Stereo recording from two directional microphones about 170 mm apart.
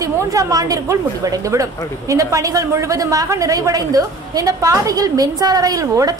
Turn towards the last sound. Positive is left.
turn(degrees=-20)  # may be behind; listen again after turning